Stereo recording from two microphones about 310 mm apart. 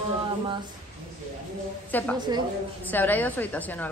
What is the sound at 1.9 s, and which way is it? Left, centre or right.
A woman's voice, centre.